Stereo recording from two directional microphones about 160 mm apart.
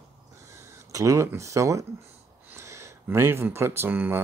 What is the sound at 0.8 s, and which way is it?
Speech, 20° right (ahead or behind).